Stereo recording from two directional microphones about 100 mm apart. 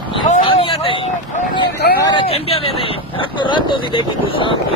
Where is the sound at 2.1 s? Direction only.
75° left (ahead or behind).